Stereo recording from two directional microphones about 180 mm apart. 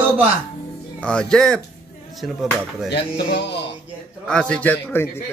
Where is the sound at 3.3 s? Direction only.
70° left (ahead or behind).